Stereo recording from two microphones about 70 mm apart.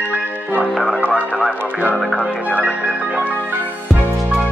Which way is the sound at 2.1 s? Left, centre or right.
Centre.